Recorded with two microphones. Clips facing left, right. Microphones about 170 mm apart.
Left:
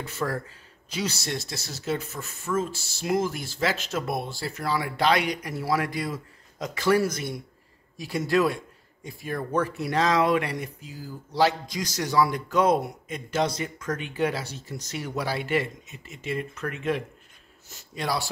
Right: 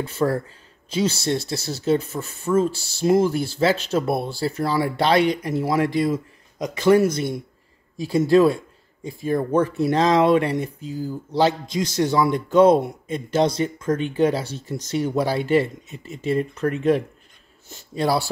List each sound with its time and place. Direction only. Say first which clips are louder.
0.0 s speech: right 8 dB; 30° right (ahead or behind)